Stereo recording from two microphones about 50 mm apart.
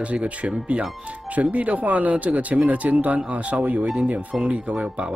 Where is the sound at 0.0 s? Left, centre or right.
Right.